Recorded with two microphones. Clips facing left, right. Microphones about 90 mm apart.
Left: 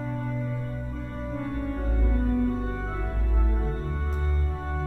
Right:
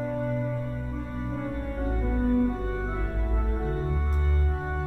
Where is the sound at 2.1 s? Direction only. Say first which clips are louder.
Right 2 dB; 10° right (ahead or behind).